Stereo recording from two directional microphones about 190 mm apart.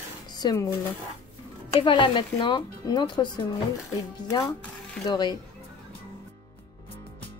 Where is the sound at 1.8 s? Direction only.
25° left (ahead or behind).